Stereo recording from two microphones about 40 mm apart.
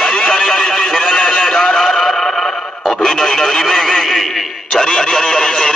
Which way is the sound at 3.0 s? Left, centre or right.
Centre.